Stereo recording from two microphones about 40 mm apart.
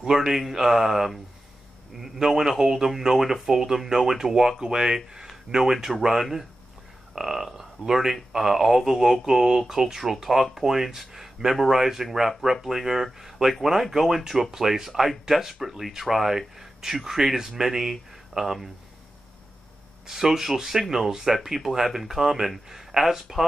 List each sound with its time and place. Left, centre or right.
0.0 s speech: centre
7.2 s speech: centre
20.1 s speech: centre